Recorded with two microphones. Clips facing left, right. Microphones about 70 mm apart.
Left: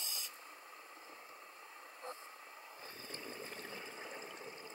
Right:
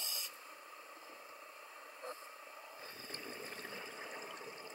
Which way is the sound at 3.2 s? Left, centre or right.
Right.